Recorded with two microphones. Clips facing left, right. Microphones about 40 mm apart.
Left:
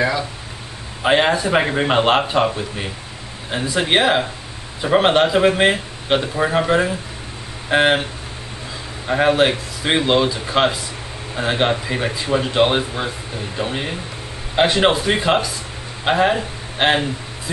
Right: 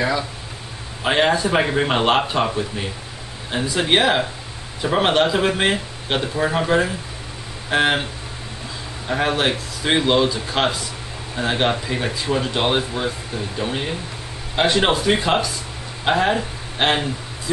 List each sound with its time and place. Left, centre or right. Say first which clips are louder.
1.0 s speech: left 2 dB; centre
9.0 s a man's voice: left 5 dB; centre